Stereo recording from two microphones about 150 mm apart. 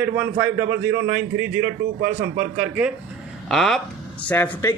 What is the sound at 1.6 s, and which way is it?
Speech, 90° right.